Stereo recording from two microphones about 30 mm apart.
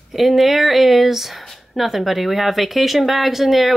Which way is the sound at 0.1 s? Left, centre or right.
Centre.